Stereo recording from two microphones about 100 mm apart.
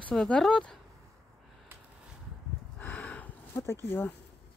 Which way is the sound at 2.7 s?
15° left (ahead or behind).